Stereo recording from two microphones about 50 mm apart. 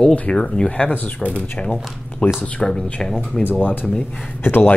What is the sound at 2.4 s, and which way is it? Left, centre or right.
Speech, centre.